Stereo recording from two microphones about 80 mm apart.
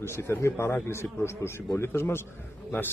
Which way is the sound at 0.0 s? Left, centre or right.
Left.